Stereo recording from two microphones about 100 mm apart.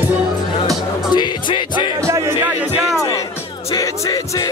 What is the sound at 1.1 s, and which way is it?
Music, 50° left (ahead or behind).